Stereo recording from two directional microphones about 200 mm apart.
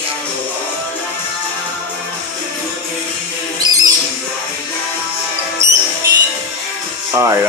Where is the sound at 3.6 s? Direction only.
20° right (ahead or behind).